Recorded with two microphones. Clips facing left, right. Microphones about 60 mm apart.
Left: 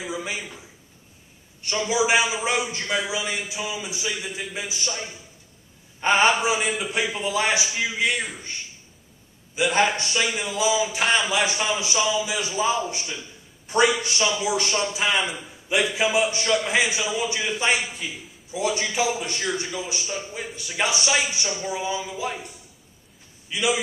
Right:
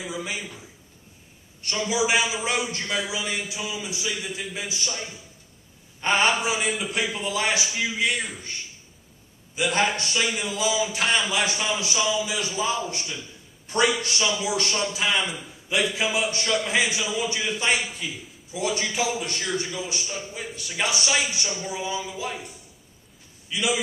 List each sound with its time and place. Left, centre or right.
0.0 s a man's voice: centre
9.6 s a man's voice: centre